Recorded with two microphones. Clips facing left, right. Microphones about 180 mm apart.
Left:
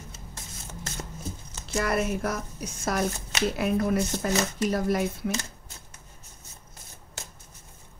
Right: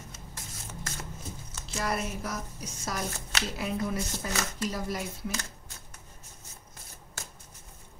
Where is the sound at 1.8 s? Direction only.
60° left (ahead or behind).